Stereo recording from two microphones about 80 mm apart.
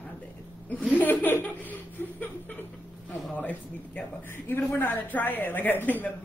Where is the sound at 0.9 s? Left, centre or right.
Left.